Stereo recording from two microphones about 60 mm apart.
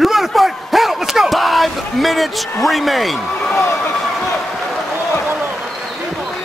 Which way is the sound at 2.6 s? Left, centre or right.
Centre.